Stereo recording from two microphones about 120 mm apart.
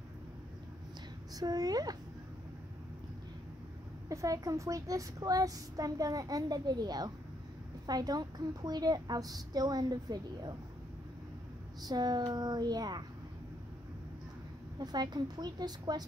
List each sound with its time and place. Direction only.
1.3 s a woman's voice: 30° right (ahead or behind)
4.1 s a woman's voice: 25° right (ahead or behind)
11.8 s a woman's voice: 35° right (ahead or behind)
14.8 s a woman's voice: 35° right (ahead or behind)